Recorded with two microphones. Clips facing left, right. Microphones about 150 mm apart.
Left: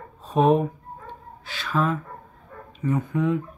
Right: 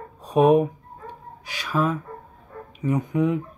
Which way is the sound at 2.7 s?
15° right (ahead or behind).